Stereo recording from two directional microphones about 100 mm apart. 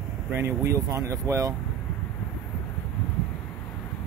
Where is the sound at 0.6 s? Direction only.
35° right (ahead or behind).